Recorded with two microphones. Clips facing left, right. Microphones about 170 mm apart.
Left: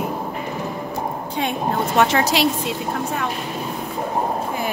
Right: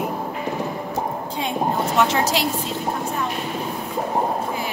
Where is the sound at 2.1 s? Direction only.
70° left (ahead or behind).